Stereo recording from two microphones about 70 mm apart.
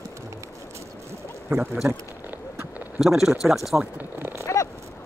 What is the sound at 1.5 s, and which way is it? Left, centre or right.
Speech, centre.